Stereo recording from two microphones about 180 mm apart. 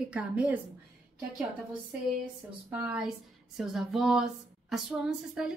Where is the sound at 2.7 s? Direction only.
10° right (ahead or behind).